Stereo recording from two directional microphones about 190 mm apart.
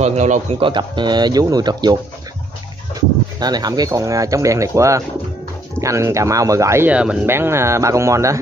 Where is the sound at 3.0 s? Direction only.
20° right (ahead or behind).